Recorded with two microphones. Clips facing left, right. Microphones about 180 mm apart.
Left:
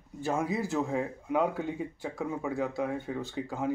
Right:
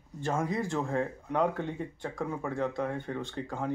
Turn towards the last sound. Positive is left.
turn(degrees=5)  # may be behind; listen again after turning